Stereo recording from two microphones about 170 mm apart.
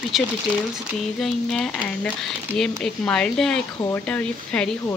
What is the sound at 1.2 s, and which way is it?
Speech, 5° left (ahead or behind).